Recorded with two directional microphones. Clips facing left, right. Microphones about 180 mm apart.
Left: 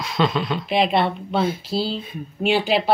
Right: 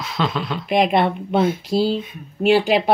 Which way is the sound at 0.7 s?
45° right (ahead or behind).